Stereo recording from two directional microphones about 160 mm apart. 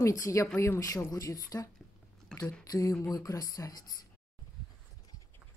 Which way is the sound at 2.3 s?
5° left (ahead or behind).